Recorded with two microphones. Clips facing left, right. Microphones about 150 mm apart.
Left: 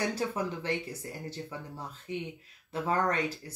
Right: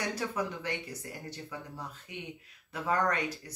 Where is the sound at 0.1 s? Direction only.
30° left (ahead or behind).